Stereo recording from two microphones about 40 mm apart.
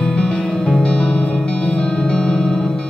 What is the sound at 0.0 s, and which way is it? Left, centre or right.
Music, centre.